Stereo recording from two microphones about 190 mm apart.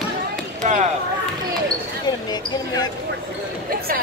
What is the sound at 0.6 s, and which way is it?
Basketball bounce, 40° right (ahead or behind).